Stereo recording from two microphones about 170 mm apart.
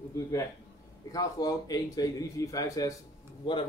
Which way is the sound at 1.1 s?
20° left (ahead or behind).